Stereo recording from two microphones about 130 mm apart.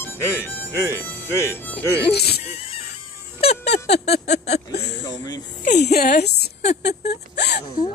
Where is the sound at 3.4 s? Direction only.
55° left (ahead or behind).